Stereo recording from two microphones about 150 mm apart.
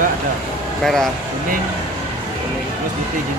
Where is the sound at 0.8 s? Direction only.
5° left (ahead or behind).